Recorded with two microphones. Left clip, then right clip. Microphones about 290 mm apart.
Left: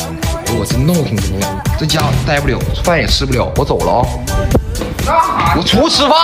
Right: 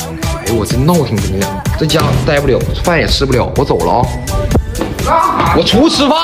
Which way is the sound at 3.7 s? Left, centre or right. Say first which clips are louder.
Right 1 dB; right.